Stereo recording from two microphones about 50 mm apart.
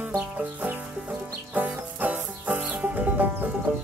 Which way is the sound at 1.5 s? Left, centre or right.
Right.